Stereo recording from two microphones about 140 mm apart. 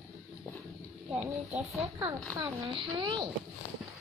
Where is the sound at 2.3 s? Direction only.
30° right (ahead or behind).